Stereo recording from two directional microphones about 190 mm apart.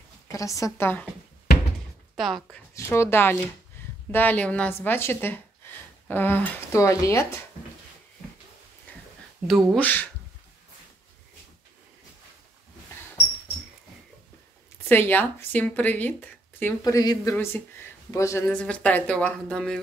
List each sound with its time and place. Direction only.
0.3 s a woman's voice: 15° left (ahead or behind)
2.1 s speech: centre (ahead or behind)
2.7 s speech: 15° left (ahead or behind)
3.8 s a sound: 15° left (ahead or behind)
4.1 s speech: 10° left (ahead or behind)
9.5 s speech: 5° right (ahead or behind)
9.8 s speech: 10° left (ahead or behind)
14.9 s speech: 10° left (ahead or behind)